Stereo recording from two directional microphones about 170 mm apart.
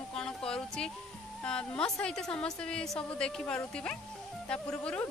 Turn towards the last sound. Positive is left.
turn(degrees=5)  # may be behind; listen again after turning